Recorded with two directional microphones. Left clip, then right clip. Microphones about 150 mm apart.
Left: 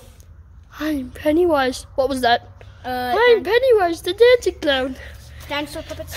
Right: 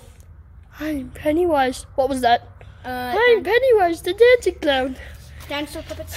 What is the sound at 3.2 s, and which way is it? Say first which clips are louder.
Speech: left 1 dB; 10° left (ahead or behind).